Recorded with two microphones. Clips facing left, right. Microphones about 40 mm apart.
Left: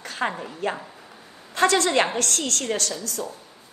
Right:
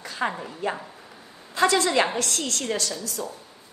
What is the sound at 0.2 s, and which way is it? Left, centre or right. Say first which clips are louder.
Speech: left 1 dB; centre.